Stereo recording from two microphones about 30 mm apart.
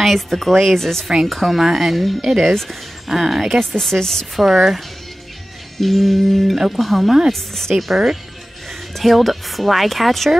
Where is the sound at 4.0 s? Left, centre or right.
Centre.